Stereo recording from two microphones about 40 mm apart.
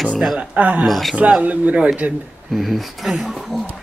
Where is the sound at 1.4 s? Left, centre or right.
Right.